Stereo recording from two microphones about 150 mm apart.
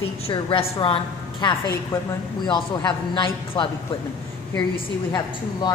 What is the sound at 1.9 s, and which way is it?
Speech, 15° left (ahead or behind).